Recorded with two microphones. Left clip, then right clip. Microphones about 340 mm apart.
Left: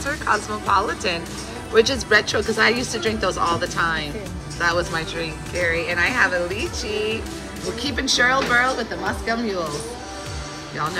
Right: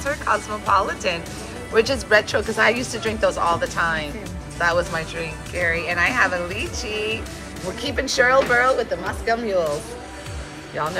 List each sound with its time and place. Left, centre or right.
0.0 s speech: centre